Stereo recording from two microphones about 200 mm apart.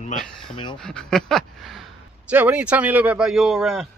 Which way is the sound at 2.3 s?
5° right (ahead or behind).